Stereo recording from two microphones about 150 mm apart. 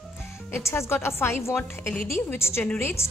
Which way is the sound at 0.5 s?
20° left (ahead or behind).